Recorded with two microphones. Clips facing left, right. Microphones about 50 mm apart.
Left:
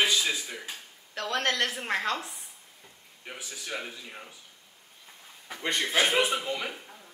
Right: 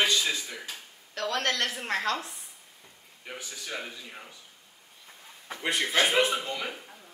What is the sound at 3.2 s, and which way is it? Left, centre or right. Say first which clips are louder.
A man's voice: even; centre.